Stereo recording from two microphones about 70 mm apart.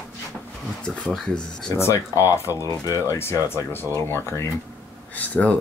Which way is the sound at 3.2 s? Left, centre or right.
Left.